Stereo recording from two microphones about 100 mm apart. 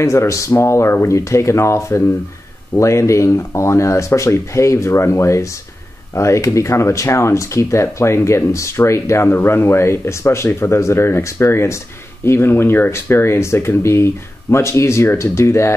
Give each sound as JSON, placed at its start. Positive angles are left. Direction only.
{"t": 0.0, "sound": "speech", "side_deg": 30}